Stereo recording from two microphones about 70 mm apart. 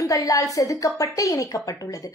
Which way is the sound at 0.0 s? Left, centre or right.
Left.